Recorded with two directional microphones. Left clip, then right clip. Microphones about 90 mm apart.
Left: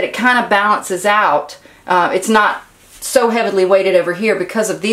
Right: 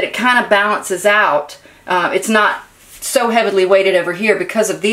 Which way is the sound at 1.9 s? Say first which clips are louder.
Left 2 dB; 10° right (ahead or behind).